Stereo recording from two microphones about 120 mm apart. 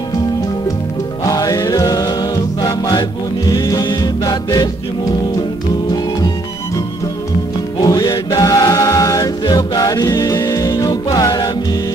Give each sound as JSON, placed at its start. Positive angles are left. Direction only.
{"t": 1.2, "sound": "music", "side_deg": 30}
{"t": 7.8, "sound": "music", "side_deg": 30}